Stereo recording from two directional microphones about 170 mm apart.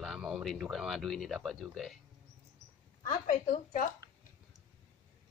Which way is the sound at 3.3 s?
45° left (ahead or behind).